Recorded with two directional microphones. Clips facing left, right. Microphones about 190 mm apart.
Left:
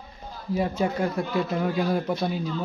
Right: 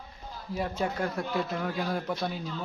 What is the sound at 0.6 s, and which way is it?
A man's voice, 5° left (ahead or behind).